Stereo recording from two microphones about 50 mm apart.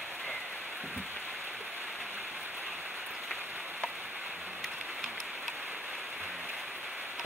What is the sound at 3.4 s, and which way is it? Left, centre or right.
Rain on surface, right.